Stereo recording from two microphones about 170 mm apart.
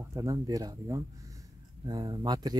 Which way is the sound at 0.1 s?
20° right (ahead or behind).